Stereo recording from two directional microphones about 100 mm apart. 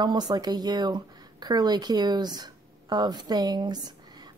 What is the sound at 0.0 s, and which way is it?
Speech, 45° right (ahead or behind).